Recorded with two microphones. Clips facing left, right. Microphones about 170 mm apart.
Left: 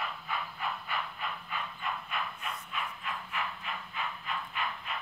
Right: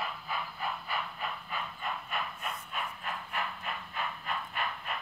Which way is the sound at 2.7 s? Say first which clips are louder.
Left 1 dB; 45° right (ahead or behind).